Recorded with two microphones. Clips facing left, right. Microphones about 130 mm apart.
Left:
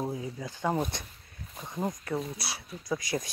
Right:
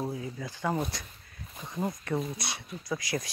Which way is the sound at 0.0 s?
15° left (ahead or behind).